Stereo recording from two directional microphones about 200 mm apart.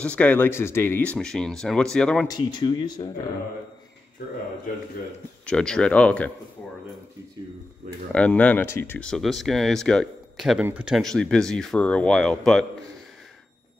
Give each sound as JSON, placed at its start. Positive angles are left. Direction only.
{"t": 0.0, "sound": "speech", "side_deg": 5}
{"t": 2.2, "sound": "speech", "side_deg": 20}
{"t": 5.4, "sound": "speech", "side_deg": 5}
{"t": 8.1, "sound": "speech", "side_deg": 5}